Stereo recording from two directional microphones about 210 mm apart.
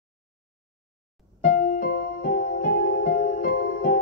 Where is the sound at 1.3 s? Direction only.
40° left (ahead or behind).